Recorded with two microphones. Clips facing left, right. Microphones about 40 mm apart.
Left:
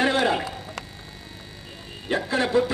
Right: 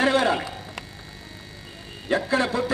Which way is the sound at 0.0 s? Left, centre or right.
Left.